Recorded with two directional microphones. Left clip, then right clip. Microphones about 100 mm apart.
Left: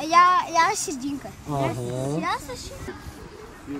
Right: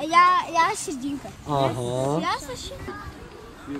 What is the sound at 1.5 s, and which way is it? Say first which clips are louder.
Speech: right 4 dB; 15° right (ahead or behind).